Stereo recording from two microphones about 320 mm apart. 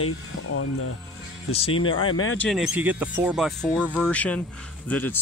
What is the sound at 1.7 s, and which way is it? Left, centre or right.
Speech, left.